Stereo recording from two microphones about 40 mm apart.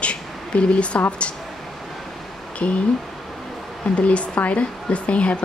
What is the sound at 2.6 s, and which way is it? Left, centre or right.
Speech, left.